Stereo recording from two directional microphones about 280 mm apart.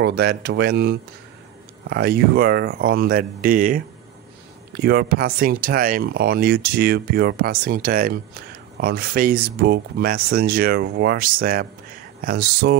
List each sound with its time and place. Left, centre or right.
0.0 s speech: right